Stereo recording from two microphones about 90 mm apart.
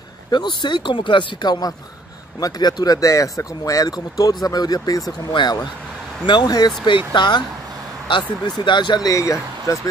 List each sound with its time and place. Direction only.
0.3 s speech: 55° left (ahead or behind)
5.3 s speech: 55° left (ahead or behind)
9.1 s speech: 35° left (ahead or behind)